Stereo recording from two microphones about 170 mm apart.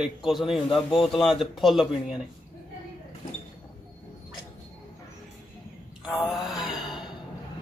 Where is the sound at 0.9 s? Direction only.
30° left (ahead or behind).